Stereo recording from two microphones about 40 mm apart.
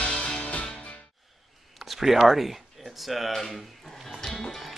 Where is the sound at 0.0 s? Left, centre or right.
Left.